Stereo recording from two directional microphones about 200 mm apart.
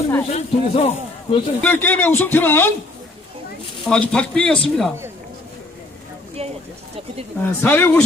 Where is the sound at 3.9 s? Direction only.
5° left (ahead or behind).